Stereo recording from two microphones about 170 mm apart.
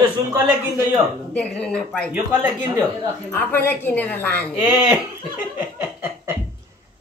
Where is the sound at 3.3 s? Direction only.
10° left (ahead or behind).